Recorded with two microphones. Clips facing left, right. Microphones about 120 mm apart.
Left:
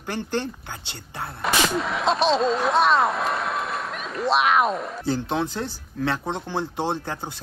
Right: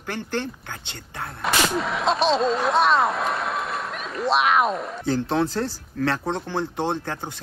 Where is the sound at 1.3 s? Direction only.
Centre (ahead or behind).